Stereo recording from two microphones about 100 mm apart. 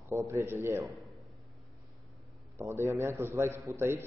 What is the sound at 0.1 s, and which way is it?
Speech, 30° right (ahead or behind).